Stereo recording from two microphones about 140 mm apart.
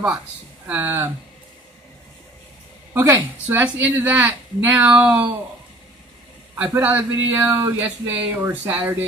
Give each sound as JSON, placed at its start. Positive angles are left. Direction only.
{"t": 0.7, "sound": "speech", "side_deg": -15}
{"t": 2.9, "sound": "a woman's voice", "side_deg": -15}
{"t": 6.5, "sound": "speech", "side_deg": -15}